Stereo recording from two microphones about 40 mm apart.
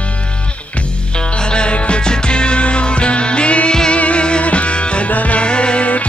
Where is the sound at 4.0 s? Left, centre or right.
Left.